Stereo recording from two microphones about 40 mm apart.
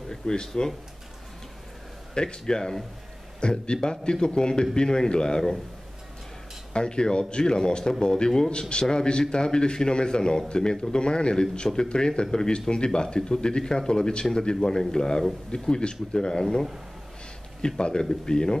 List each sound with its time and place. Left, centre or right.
0.1 s speech: centre
2.1 s speech: left
6.7 s speech: left